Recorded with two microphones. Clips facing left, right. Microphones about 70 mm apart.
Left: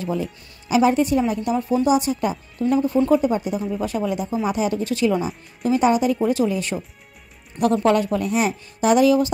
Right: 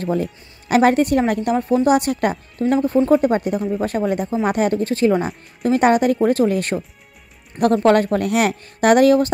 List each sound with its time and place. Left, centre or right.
0.0 s speech: right
2.6 s speech: right